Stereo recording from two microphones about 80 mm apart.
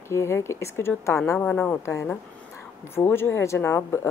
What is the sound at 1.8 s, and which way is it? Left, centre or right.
A woman's voice, left.